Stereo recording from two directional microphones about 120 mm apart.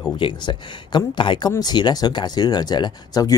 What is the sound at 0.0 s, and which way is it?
Speech, 40° left (ahead or behind).